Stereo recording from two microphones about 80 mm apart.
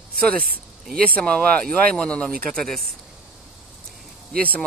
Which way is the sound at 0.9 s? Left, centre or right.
Centre.